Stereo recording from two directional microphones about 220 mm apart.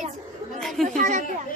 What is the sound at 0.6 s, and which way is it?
Speech, centre (ahead or behind).